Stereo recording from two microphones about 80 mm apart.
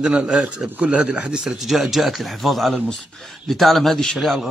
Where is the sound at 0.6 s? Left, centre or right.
Centre.